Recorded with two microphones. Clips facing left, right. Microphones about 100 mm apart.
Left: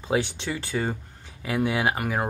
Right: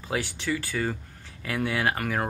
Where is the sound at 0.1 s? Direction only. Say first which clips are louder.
Left 3 dB; 20° left (ahead or behind).